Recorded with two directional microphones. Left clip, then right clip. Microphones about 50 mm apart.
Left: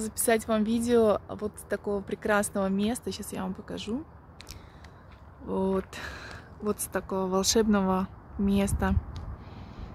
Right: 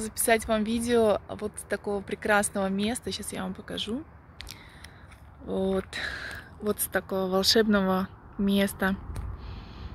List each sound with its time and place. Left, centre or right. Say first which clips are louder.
0.0 s speech: right 1 dB; left; by 5.9 s centre
5.9 s speech: right 6 dB; centre